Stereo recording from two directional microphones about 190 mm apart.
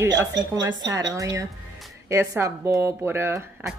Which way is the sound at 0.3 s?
70° right (ahead or behind).